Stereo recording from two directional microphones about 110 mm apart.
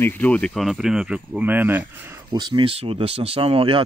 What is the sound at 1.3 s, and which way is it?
Speech, 15° right (ahead or behind).